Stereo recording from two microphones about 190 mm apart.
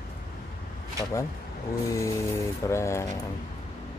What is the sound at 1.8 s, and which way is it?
Speech, 15° left (ahead or behind).